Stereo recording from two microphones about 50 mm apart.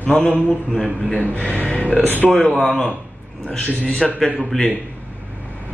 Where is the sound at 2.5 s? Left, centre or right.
Centre.